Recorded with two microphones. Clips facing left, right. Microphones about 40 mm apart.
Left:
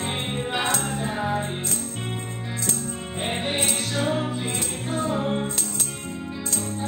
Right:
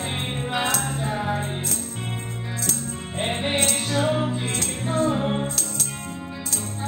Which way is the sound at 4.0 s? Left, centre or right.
Centre.